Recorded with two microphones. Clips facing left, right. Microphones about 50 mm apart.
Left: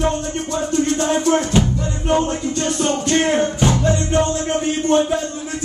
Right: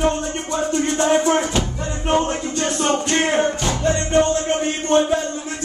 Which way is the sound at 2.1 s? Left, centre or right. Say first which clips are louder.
Left 1 dB; right.